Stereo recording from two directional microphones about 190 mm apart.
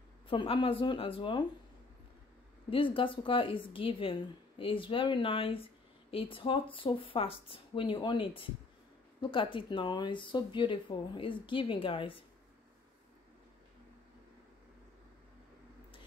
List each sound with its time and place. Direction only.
0.3 s a woman's voice: 25° left (ahead or behind)
2.7 s a woman's voice: 25° left (ahead or behind)